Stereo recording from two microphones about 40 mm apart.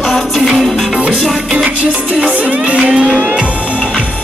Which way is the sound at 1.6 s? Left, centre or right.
Right.